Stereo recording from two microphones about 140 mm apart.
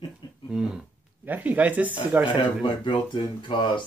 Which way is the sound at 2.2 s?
35° left (ahead or behind).